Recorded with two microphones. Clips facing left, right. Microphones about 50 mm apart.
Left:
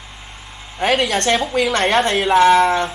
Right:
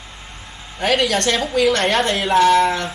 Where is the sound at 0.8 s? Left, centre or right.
Left.